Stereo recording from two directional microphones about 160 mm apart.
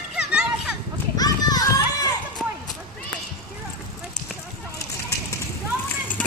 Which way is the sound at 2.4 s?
5° left (ahead or behind).